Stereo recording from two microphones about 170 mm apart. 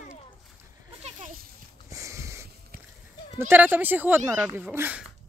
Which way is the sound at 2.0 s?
15° right (ahead or behind).